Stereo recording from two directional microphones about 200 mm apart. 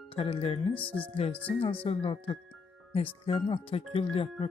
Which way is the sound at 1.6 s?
30° left (ahead or behind).